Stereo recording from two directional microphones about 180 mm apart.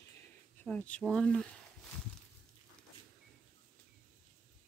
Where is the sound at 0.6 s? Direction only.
5° left (ahead or behind).